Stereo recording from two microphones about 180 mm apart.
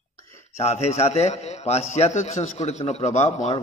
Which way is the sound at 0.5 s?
35° left (ahead or behind).